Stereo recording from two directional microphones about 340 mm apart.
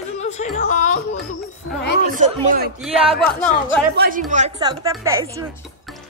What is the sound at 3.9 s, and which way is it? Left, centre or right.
A woman's voice, right.